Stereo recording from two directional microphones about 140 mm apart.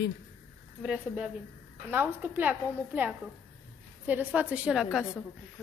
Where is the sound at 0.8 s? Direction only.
10° right (ahead or behind).